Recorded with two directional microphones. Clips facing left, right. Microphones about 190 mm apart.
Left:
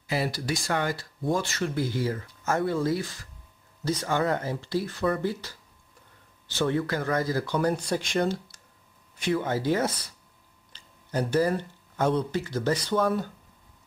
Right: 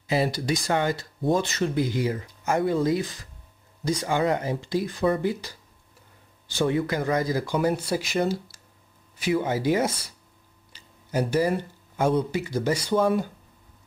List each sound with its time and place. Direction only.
0.0 s speech: 20° right (ahead or behind)